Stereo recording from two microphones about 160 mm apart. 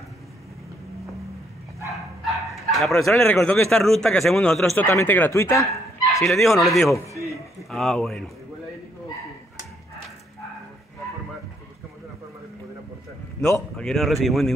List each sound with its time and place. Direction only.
2.2 s dog: centre (ahead or behind)
2.7 s fowl: centre (ahead or behind)
3.0 s speech: 15° left (ahead or behind)
3.7 s speech: 5° left (ahead or behind); by 6.2 s 20° left (ahead or behind)
6.2 s speech: centre (ahead or behind)
13.4 s speech: 5° left (ahead or behind)